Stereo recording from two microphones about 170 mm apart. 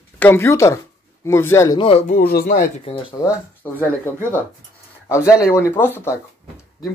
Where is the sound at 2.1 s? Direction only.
65° left (ahead or behind).